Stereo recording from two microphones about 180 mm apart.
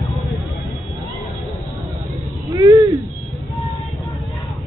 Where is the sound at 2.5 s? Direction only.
20° right (ahead or behind).